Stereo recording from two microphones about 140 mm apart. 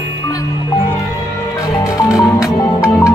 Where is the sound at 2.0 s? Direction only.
25° left (ahead or behind).